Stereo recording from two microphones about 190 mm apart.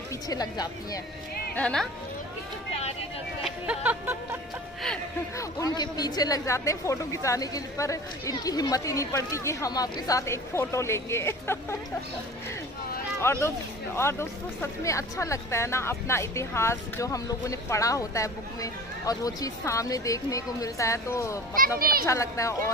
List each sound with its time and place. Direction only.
0.3 s speech: 20° left (ahead or behind)
1.5 s speech: 5° left (ahead or behind)
3.4 s music: 5° right (ahead or behind)
5.4 s speech: 20° left (ahead or behind)
13.2 s speech: 15° left (ahead or behind)
21.5 s a child's voice: 50° right (ahead or behind)
22.0 s speech: 15° left (ahead or behind)